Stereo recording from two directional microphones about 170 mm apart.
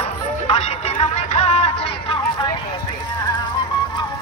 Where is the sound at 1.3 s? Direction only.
40° left (ahead or behind).